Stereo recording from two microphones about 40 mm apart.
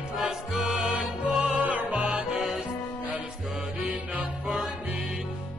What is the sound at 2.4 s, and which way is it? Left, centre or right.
Music, centre.